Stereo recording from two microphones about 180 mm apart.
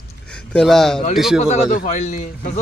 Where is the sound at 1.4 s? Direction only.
40° left (ahead or behind).